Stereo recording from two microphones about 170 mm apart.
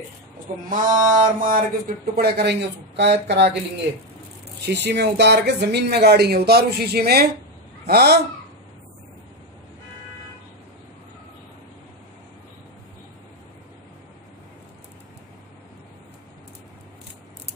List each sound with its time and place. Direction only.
0.7 s mantra: 50° right (ahead or behind)
2.1 s speech: 70° right (ahead or behind)
4.6 s speech: 80° right